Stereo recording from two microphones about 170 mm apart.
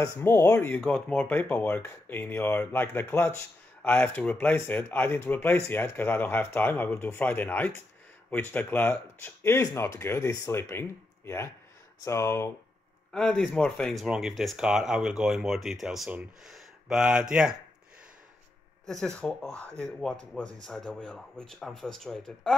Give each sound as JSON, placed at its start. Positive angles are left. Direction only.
{"t": 0.0, "sound": "speech", "side_deg": 15}
{"t": 13.1, "sound": "speech", "side_deg": 5}
{"t": 18.9, "sound": "speech", "side_deg": 5}